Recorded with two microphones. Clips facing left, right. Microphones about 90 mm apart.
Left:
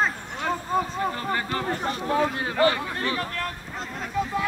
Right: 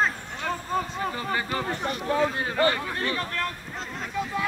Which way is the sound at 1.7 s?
35° left (ahead or behind).